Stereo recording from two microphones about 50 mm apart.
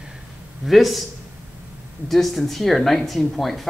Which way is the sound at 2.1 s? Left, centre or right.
Centre.